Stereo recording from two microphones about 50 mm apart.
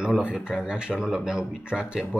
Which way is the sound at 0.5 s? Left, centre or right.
Centre.